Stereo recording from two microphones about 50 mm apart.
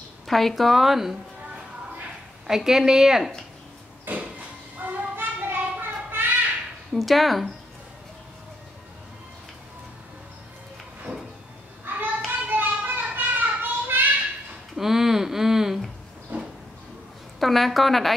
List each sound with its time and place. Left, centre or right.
0.3 s a woman's voice: centre
2.4 s speech: centre
4.1 s a sound: right
6.9 s a woman's voice: centre
11.9 s hands: right
12.3 s a sound: right
14.8 s speech: centre
16.3 s a sound: right
17.4 s a woman's voice: centre